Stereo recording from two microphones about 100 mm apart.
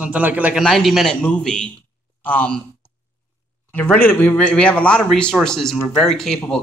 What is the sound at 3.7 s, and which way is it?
Speech, 20° left (ahead or behind).